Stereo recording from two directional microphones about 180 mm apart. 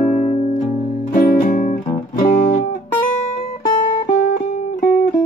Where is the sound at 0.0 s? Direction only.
35° left (ahead or behind).